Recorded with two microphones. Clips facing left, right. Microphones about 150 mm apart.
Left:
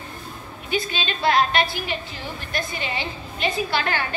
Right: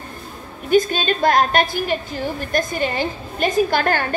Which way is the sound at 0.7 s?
45° right (ahead or behind).